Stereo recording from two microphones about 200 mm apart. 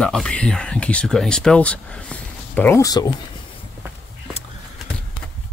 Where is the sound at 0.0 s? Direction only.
5° left (ahead or behind).